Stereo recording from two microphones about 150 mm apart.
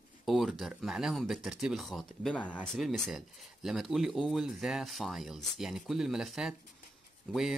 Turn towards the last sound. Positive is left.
turn(degrees=-5)  # may be behind; listen again after turning